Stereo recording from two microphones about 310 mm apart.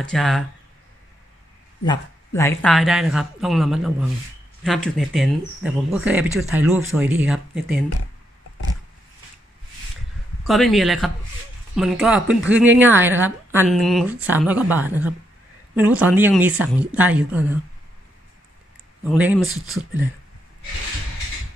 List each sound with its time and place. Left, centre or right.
0.0 s speech: centre
1.9 s speech: centre
10.4 s speech: centre
19.0 s speech: centre